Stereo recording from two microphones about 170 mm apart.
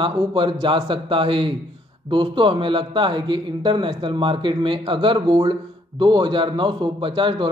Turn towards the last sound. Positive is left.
turn(degrees=-30)  # may be behind; listen again after turning